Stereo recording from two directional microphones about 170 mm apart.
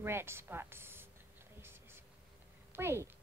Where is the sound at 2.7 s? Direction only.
15° right (ahead or behind).